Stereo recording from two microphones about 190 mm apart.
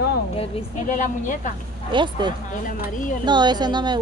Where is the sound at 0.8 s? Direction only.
45° left (ahead or behind).